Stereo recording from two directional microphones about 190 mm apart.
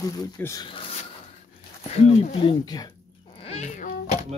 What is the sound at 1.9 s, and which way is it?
Speech, 35° left (ahead or behind).